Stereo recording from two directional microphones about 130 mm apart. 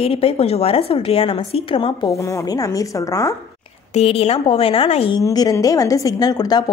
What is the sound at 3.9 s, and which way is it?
A woman's voice, 50° left (ahead or behind).